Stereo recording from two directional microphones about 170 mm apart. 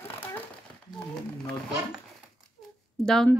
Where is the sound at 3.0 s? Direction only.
5° left (ahead or behind).